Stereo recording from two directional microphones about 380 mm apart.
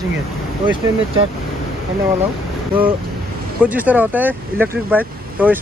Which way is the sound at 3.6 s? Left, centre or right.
Centre.